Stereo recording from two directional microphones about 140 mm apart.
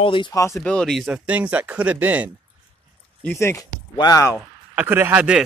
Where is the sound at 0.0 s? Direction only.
35° left (ahead or behind).